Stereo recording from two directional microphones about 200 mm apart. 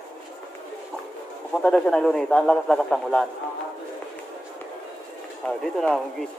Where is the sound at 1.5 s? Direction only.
5° left (ahead or behind).